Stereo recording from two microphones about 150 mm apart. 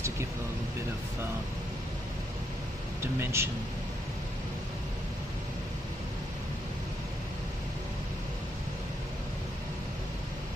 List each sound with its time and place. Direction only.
3.2 s speech: 15° right (ahead or behind)